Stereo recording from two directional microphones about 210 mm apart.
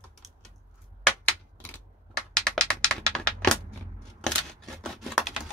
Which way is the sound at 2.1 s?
5° left (ahead or behind).